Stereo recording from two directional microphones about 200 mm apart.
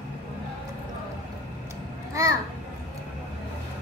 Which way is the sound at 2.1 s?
15° right (ahead or behind).